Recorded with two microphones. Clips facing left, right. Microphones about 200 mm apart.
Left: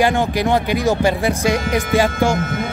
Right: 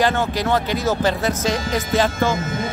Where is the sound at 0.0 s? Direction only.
15° left (ahead or behind).